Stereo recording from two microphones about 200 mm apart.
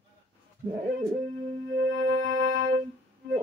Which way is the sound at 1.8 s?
55° right (ahead or behind).